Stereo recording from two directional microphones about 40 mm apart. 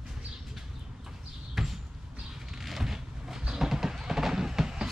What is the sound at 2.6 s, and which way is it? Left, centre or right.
Vehicle, centre.